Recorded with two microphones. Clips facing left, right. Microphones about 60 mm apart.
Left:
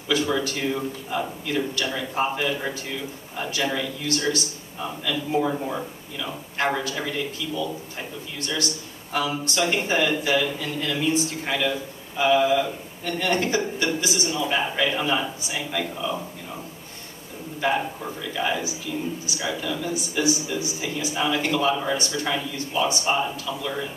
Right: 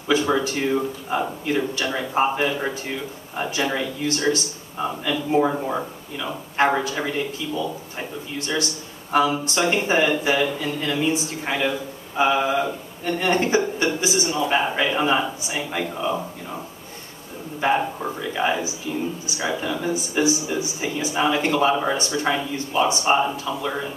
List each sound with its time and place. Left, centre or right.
0.1 s speech: right
3.5 s speech: right
17.6 s a man's voice: right